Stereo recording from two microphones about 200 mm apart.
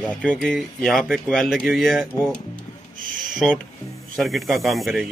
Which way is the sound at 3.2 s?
Centre (ahead or behind).